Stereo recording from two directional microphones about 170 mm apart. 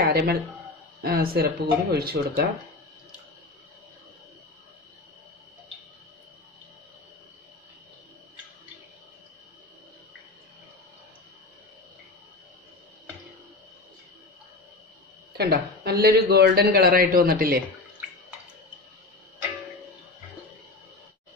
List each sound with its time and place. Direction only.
0.0 s a man's voice: 70° right (ahead or behind)
15.3 s a man's voice: 75° right (ahead or behind)